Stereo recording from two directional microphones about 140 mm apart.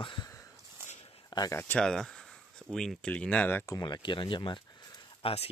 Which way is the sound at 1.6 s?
10° left (ahead or behind).